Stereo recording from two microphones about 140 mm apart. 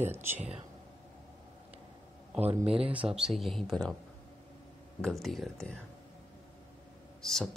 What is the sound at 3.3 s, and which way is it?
Speech, centre (ahead or behind).